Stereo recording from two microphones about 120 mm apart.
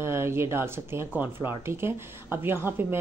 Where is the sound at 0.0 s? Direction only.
20° right (ahead or behind).